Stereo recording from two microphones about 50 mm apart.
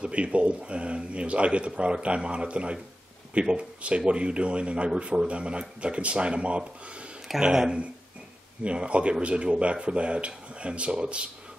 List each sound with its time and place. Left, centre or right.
0.0 s speech: right